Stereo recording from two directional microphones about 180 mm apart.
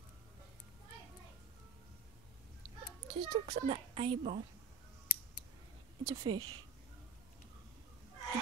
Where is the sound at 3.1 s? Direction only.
25° right (ahead or behind).